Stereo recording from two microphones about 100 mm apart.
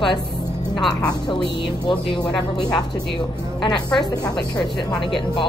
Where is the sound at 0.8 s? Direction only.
5° left (ahead or behind).